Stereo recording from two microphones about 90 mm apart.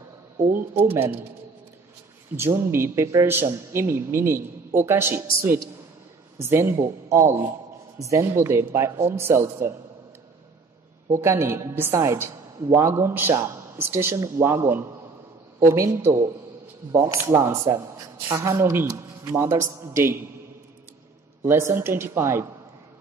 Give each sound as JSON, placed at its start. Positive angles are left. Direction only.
{"t": 0.4, "sound": "a man's voice", "side_deg": -25}
{"t": 2.3, "sound": "a man's voice", "side_deg": -25}
{"t": 11.1, "sound": "a man's voice", "side_deg": -30}
{"t": 21.5, "sound": "a man's voice", "side_deg": -30}